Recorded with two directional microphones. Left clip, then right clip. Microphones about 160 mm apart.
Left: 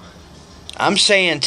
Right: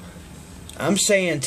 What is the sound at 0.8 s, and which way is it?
Speech, 25° right (ahead or behind).